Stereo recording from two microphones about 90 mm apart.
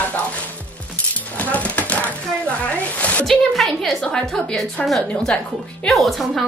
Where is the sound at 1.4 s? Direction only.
15° left (ahead or behind).